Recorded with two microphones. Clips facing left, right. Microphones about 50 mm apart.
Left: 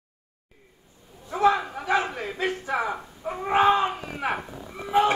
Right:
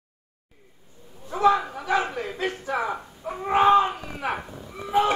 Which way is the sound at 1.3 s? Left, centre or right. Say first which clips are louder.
Right 1 dB; left.